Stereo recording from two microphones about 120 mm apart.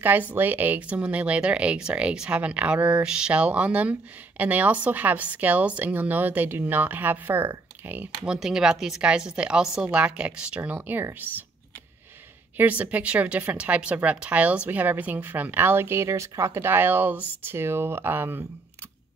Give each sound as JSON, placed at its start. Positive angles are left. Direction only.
{"t": 0.0, "sound": "speech", "side_deg": -15}
{"t": 8.2, "sound": "speech", "side_deg": -5}
{"t": 12.5, "sound": "speech", "side_deg": -15}